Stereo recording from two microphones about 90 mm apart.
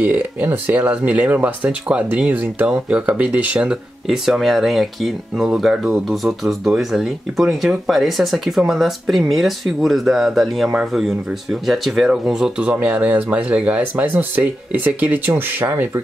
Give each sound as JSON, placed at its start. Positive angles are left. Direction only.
{"t": 0.0, "sound": "speech", "side_deg": -20}